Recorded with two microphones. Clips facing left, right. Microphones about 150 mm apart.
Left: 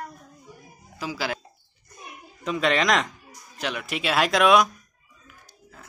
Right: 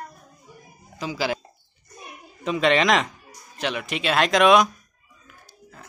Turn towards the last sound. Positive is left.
turn(degrees=0)  # may be behind; listen again after turning